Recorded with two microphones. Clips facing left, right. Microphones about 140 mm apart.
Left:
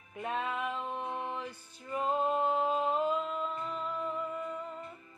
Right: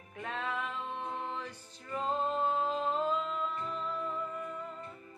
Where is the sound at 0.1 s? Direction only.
10° left (ahead or behind).